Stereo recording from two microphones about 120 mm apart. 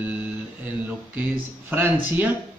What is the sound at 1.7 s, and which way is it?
Speech, 15° right (ahead or behind).